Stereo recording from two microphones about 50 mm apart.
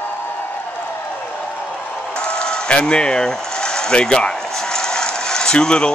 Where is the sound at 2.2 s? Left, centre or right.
Centre.